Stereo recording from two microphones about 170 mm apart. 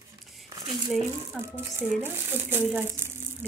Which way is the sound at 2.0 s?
15° right (ahead or behind).